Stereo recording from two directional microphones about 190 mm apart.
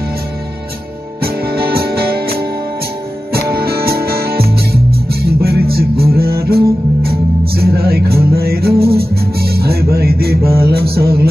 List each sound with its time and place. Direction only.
1.2 s music: 55° right (ahead or behind)